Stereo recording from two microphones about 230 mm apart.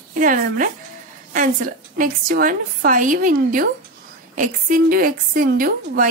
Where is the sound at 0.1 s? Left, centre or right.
Right.